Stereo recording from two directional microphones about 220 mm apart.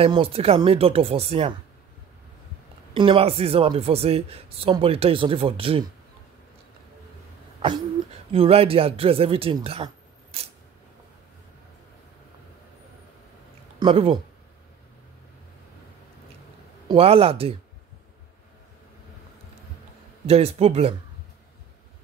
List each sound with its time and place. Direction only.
0.0 s speech: 25° right (ahead or behind)
3.0 s speech: 25° right (ahead or behind)
8.3 s speech: 25° right (ahead or behind)
13.7 s speech: 25° right (ahead or behind)
16.8 s speech: 25° right (ahead or behind)
20.2 s speech: 30° right (ahead or behind)